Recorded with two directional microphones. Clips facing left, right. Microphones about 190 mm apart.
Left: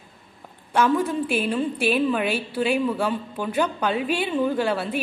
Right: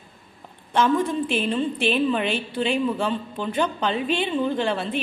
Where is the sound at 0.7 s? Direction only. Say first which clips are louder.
Even; 10° left (ahead or behind).